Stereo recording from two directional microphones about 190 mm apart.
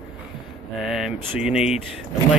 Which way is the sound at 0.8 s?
Centre (ahead or behind).